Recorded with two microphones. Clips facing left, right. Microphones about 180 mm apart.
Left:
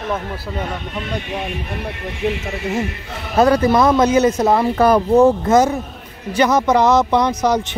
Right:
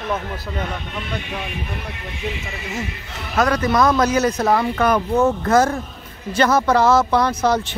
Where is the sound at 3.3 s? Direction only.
30° left (ahead or behind).